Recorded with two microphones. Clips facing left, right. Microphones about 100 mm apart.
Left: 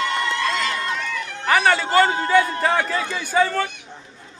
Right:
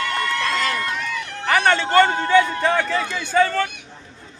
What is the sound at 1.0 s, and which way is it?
A man's voice, 5° left (ahead or behind).